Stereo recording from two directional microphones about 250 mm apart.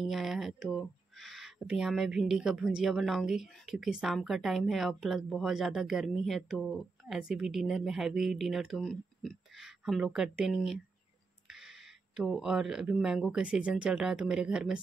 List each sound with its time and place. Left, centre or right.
0.0 s speech: centre
11.4 s a sound: centre
12.2 s speech: centre